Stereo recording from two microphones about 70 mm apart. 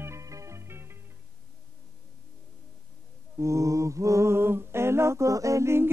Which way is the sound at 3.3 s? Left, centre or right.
Right.